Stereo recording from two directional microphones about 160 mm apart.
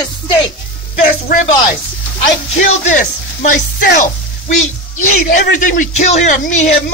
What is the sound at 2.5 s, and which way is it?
A man's voice, 50° left (ahead or behind).